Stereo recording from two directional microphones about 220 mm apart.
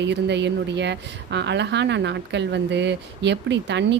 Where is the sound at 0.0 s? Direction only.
50° right (ahead or behind).